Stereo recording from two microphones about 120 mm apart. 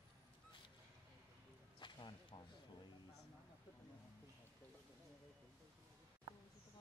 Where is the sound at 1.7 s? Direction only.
40° left (ahead or behind).